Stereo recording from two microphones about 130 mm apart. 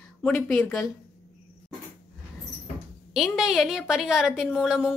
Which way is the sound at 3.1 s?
Centre (ahead or behind).